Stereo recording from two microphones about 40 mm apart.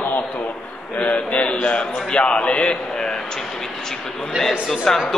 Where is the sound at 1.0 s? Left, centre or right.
Left.